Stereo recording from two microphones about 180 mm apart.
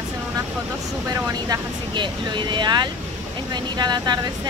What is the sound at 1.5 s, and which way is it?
Speech, 25° right (ahead or behind).